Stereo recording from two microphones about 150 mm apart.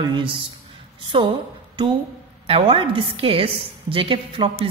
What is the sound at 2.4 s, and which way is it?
A woman's voice, 40° right (ahead or behind).